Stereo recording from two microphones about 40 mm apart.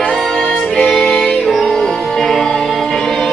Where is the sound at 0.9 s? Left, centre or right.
Centre.